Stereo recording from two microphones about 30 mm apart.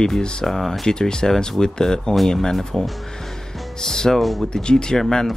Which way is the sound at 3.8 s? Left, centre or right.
Centre.